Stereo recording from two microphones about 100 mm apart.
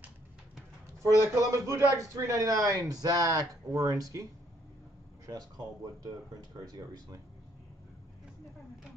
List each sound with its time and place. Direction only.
1.0 s a man's voice: 30° right (ahead or behind)
6.6 s speech: 40° right (ahead or behind)